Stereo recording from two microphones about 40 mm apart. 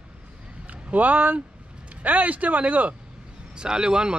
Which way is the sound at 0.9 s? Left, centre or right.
Right.